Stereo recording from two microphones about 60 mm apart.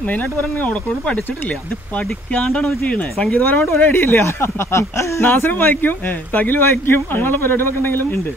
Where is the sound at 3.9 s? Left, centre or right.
Left.